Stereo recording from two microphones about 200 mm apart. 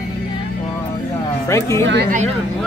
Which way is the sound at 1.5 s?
15° left (ahead or behind).